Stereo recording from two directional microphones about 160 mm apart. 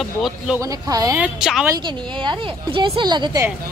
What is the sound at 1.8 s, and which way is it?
A woman's voice, 30° right (ahead or behind).